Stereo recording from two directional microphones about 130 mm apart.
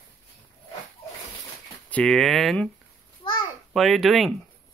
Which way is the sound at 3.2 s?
45° left (ahead or behind).